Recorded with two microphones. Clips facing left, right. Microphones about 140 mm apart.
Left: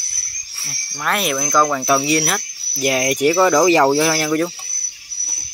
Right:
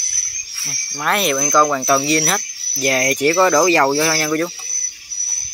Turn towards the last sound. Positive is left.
turn(degrees=10)  # may be behind; listen again after turning